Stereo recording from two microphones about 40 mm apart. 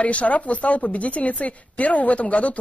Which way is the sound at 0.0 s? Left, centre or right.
Left.